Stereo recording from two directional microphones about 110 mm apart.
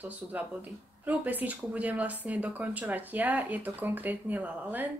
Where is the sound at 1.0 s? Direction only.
15° right (ahead or behind).